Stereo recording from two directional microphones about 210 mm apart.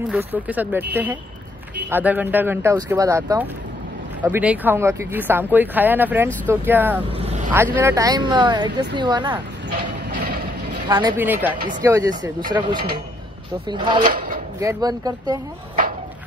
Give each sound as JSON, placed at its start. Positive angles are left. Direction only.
{"t": 0.1, "sound": "speech", "side_deg": -10}
{"t": 1.9, "sound": "speech", "side_deg": -10}
{"t": 7.2, "sound": "speech", "side_deg": -30}
{"t": 7.5, "sound": "speech", "side_deg": -10}
{"t": 10.9, "sound": "speech", "side_deg": -20}